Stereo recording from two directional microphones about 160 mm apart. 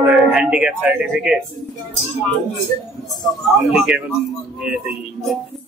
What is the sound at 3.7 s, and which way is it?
Speech, 5° right (ahead or behind).